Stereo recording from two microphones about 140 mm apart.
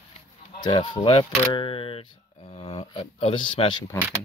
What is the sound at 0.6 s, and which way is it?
Speech, 35° left (ahead or behind).